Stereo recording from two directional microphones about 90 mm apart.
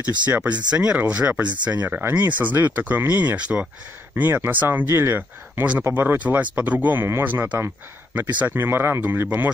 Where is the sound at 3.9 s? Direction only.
25° right (ahead or behind).